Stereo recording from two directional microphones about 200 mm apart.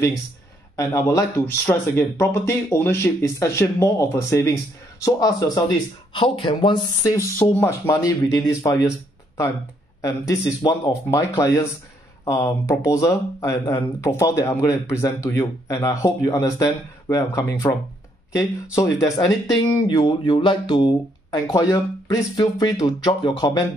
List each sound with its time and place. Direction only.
0.7 s speech: 15° left (ahead or behind)
10.0 s speech: 15° left (ahead or behind)